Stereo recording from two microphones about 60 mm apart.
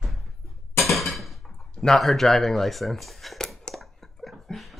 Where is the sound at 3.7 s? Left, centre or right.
Centre.